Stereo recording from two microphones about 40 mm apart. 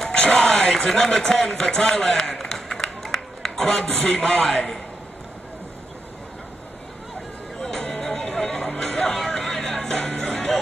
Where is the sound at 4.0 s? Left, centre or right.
Left.